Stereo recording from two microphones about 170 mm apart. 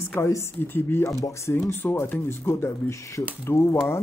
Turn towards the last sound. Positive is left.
turn(degrees=15)  # may be behind; listen again after turning